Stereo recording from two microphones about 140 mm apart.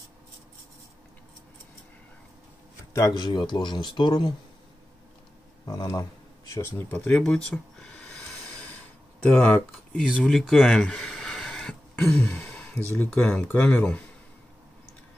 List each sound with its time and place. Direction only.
2.9 s speech: 25° left (ahead or behind)
5.7 s speech: 30° left (ahead or behind)
7.1 s speech: 5° left (ahead or behind)
9.2 s speech: 10° left (ahead or behind)
10.2 s a sound: centre (ahead or behind)
12.0 s sigh: 10° left (ahead or behind)
12.9 s speech: 10° left (ahead or behind)